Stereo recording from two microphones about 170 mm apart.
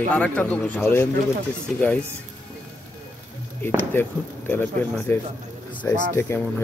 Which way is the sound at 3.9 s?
10° left (ahead or behind).